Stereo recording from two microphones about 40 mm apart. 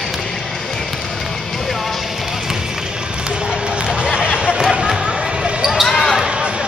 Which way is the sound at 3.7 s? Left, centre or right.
Right.